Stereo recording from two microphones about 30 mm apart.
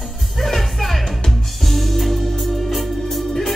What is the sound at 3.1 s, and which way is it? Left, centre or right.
Organ, centre.